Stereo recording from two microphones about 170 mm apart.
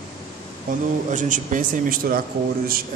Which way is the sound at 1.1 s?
50° right (ahead or behind).